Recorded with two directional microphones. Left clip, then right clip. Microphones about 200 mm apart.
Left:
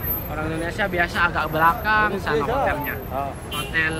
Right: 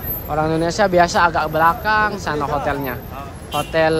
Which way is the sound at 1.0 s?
15° right (ahead or behind).